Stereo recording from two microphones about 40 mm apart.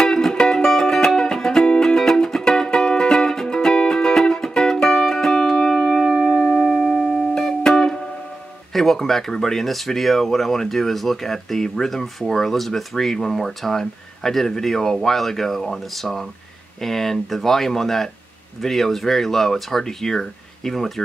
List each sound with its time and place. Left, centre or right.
0.0 s music: centre
7.3 s music: centre
8.7 s speech: centre